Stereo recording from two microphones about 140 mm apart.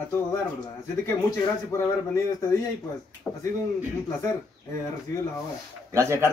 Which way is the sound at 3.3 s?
5° left (ahead or behind).